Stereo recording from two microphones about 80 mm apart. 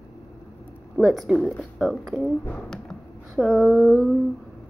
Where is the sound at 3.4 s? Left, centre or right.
Centre.